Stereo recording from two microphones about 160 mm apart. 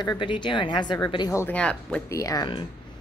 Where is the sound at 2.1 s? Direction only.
20° left (ahead or behind).